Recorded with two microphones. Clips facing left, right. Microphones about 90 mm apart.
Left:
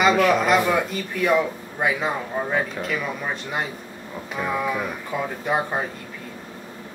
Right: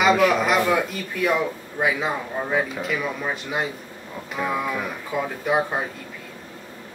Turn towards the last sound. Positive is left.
turn(degrees=0)  # may be behind; listen again after turning